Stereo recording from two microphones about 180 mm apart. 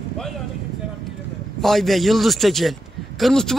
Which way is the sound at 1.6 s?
Centre (ahead or behind).